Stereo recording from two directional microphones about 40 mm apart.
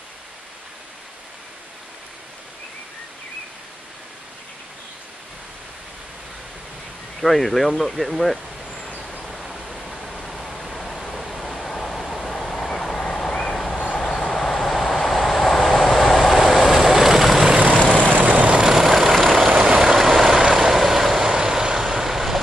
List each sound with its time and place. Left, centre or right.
7.2 s speech: centre
9.2 s pink noise: centre
14.0 s vehicle: centre
17.6 s vehicle: right
18.6 s vehicle: centre
19.5 s vehicle: right
19.8 s vehicle: centre